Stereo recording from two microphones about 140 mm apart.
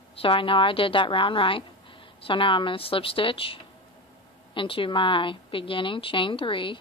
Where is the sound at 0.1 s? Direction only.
40° left (ahead or behind).